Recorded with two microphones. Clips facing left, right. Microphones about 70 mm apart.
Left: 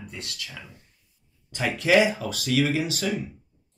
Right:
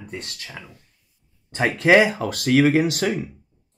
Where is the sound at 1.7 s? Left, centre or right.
Right.